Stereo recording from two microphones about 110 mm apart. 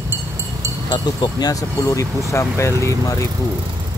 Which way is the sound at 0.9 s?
35° left (ahead or behind).